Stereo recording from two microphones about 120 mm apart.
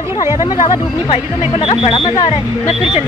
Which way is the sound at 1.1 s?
50° left (ahead or behind).